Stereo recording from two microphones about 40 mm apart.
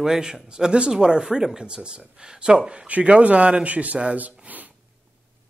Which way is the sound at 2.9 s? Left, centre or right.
Right.